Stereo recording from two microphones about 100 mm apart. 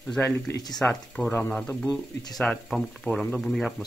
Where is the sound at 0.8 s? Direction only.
5° left (ahead or behind).